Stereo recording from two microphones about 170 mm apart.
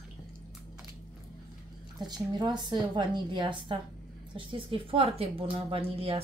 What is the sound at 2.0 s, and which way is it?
A woman's voice, 25° right (ahead or behind).